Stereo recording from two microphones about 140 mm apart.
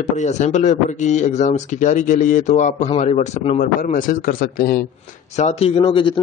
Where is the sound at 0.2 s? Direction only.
55° left (ahead or behind); by 4.8 s 90° left.